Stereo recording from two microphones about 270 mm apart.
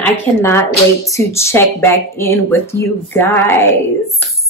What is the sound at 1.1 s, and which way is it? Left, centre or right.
A woman's voice, centre.